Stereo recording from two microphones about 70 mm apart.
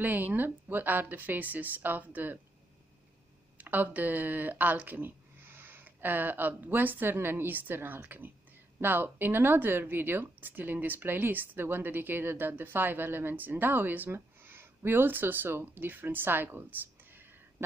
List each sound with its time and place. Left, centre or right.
0.0 s speech: right
3.5 s speech: right